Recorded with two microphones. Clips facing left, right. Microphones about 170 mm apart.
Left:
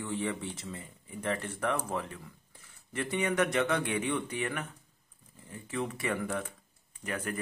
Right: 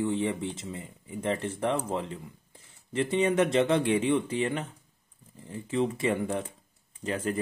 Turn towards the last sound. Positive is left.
turn(degrees=-25)  # may be behind; listen again after turning